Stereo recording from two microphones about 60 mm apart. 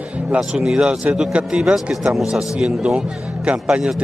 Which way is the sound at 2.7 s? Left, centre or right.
Centre.